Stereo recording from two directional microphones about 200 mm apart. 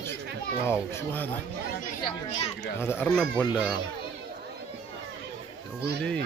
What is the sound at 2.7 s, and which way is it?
Speech, 10° left (ahead or behind).